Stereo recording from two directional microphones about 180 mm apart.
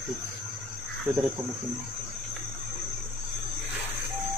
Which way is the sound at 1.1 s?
Centre (ahead or behind).